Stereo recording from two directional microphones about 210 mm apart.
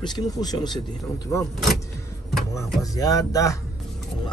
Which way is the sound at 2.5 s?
15° left (ahead or behind).